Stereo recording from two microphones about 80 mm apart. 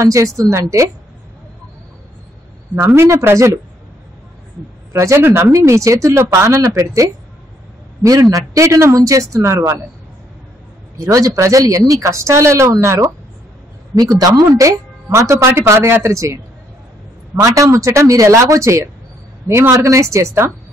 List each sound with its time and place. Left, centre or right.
0.0 s speech: right
2.7 s speech: right
4.9 s speech: right
11.0 s speech: right
13.9 s a woman's voice: right
17.4 s speech: right